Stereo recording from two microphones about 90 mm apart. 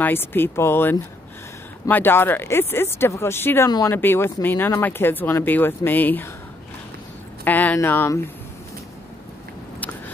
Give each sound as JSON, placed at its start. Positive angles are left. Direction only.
{"t": 0.0, "sound": "speech", "side_deg": 25}
{"t": 3.6, "sound": "speech", "side_deg": 40}
{"t": 3.9, "sound": "speech", "side_deg": 25}
{"t": 7.4, "sound": "speech", "side_deg": 20}